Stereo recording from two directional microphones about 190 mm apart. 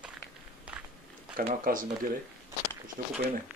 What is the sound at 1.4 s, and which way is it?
Speech, 45° right (ahead or behind).